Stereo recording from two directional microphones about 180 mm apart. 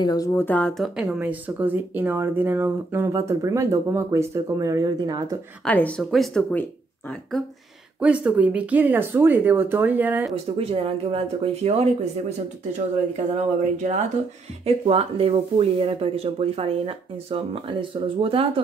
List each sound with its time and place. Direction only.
0.0 s speech: 20° left (ahead or behind); by 5.4 s 20° right (ahead or behind)
5.7 s speech: 10° left (ahead or behind)
8.0 s speech: 5° right (ahead or behind)
10.6 s speech: 30° right (ahead or behind)